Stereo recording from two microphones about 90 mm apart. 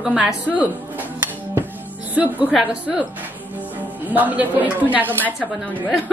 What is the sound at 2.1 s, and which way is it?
A woman's voice, 15° right (ahead or behind).